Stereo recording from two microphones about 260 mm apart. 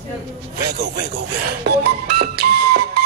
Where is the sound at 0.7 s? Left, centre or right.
Right.